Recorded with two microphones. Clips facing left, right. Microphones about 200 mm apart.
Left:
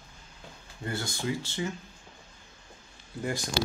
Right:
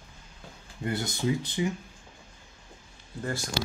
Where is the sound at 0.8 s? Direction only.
20° right (ahead or behind).